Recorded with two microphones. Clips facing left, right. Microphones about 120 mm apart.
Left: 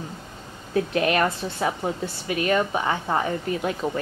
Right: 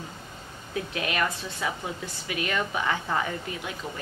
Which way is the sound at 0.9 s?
40° left (ahead or behind).